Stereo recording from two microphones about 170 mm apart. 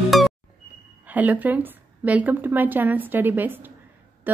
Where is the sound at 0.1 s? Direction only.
Centre (ahead or behind).